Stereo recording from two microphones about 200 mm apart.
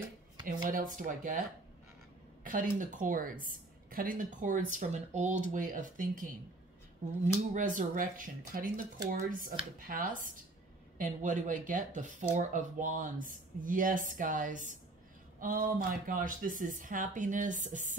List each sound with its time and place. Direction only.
0.7 s a woman's voice: 40° right (ahead or behind)
2.4 s a woman's voice: 40° right (ahead or behind)
7.3 s a woman's voice: 40° right (ahead or behind)